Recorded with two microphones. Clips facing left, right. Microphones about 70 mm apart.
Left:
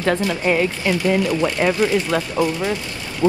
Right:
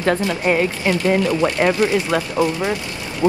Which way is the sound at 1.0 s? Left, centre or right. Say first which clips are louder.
Right 1 dB; right.